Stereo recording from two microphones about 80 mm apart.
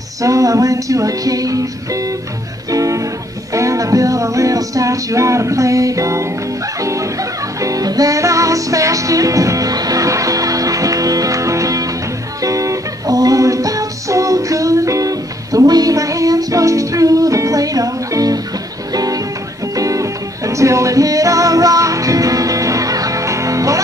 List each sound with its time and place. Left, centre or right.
0.2 s music: right